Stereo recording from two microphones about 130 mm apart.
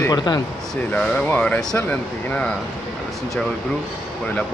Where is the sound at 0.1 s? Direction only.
30° left (ahead or behind).